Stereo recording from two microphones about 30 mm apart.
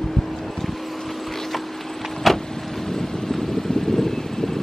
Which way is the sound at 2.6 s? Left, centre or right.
Centre.